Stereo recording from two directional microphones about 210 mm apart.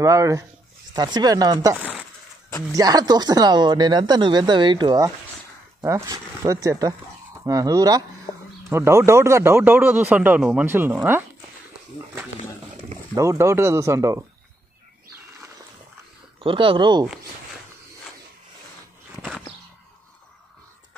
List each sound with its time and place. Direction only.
0.0 s speech: 15° right (ahead or behind)
13.1 s speech: 15° right (ahead or behind)
16.3 s speech: 25° right (ahead or behind)